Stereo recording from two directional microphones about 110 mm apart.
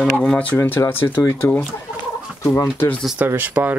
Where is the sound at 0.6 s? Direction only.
20° left (ahead or behind).